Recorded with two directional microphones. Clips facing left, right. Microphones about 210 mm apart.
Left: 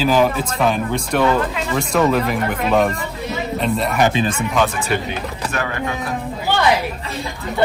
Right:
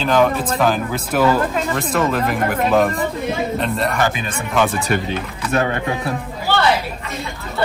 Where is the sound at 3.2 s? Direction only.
50° right (ahead or behind).